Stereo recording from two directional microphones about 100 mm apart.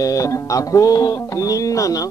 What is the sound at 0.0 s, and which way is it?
Music, 35° left (ahead or behind).